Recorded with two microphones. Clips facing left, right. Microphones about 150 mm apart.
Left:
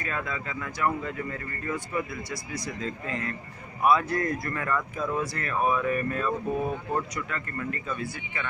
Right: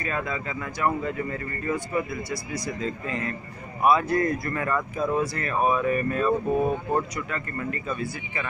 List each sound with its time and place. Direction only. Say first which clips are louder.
0.0 s speech: right 3 dB; 10° right (ahead or behind)
2.8 s speech: right 2 dB; 10° right (ahead or behind)
5.2 s speech: right 3 dB; 5° right (ahead or behind)
5.6 s speech: right 3 dB; 20° right (ahead or behind)
6.2 s speech: right 5 dB; 25° right (ahead or behind)
7.2 s speech: right 2 dB; 15° right (ahead or behind)